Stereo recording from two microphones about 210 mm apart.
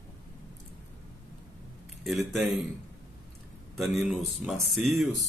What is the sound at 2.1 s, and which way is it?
Speech, centre (ahead or behind).